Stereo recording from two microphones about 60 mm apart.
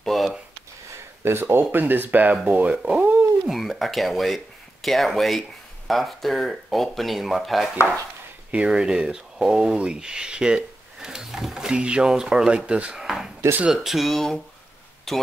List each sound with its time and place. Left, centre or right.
0.0 s a sound: centre
0.8 s speech: right
3.0 s a sound: right
3.4 s speech: centre
8.5 s speech: centre
12.9 s drawer open or close: centre
13.7 s speech: centre